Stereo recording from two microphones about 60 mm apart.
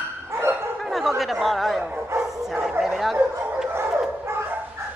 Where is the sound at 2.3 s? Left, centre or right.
Centre.